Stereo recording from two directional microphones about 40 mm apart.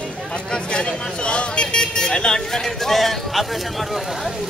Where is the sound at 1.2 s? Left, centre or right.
Left; by 4.3 s centre.